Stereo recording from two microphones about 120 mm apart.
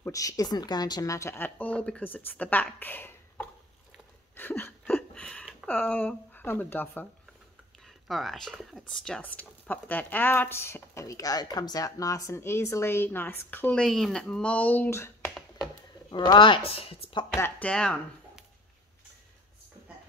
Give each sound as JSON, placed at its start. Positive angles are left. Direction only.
{"t": 0.1, "sound": "a woman's voice", "side_deg": 30}
{"t": 4.4, "sound": "a sound", "side_deg": 15}
{"t": 5.7, "sound": "speech", "side_deg": 15}
{"t": 7.8, "sound": "speech", "side_deg": 0}
{"t": 16.1, "sound": "speech", "side_deg": 40}
{"t": 17.4, "sound": "speech", "side_deg": 10}